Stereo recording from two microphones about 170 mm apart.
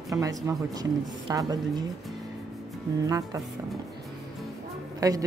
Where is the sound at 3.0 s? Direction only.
20° right (ahead or behind).